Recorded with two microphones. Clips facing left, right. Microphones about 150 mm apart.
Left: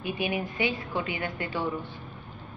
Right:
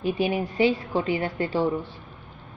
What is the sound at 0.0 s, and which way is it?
A woman's voice, 40° right (ahead or behind).